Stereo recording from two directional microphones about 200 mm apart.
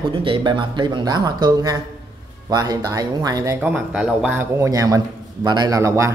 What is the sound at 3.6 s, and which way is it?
Speech, 5° right (ahead or behind).